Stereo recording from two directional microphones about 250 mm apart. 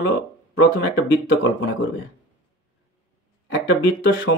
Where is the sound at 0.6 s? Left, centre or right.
Left.